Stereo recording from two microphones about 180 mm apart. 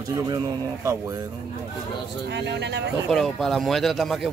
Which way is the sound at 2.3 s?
70° right (ahead or behind).